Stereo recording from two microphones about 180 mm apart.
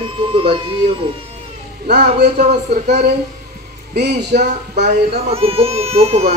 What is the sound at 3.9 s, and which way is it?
Speech, 70° right (ahead or behind).